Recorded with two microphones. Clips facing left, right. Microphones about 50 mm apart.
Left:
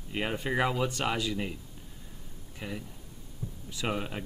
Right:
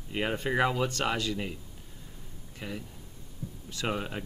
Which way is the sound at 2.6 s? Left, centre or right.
Centre.